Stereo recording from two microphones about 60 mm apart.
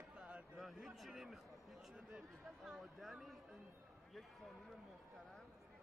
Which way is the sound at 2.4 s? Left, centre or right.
Centre.